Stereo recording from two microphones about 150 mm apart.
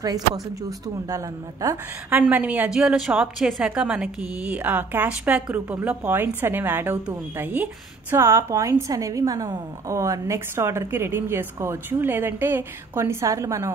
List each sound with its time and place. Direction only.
0.0 s a woman's voice: 25° right (ahead or behind)